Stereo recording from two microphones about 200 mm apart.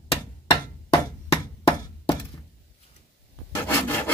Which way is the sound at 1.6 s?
25° left (ahead or behind).